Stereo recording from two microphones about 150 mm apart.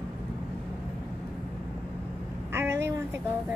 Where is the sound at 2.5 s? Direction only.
15° right (ahead or behind).